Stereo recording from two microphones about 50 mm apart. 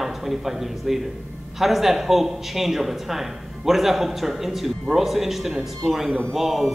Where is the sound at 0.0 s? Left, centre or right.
Centre.